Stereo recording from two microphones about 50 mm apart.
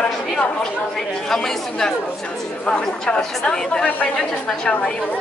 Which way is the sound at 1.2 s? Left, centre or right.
Centre.